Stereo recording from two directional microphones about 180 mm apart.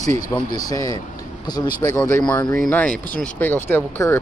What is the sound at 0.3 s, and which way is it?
Speech, 20° left (ahead or behind).